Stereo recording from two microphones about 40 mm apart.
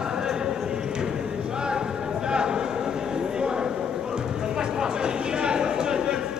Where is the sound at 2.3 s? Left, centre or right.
Centre.